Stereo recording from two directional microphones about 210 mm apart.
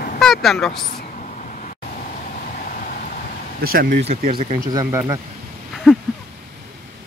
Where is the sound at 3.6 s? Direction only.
45° right (ahead or behind).